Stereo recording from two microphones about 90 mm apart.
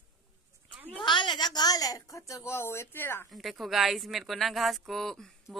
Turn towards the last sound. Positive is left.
turn(degrees=5)  # may be behind; listen again after turning